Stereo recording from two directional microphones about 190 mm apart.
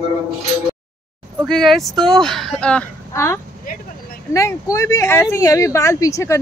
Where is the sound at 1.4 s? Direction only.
Centre (ahead or behind).